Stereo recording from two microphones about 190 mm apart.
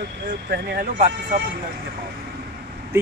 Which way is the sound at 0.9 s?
40° right (ahead or behind).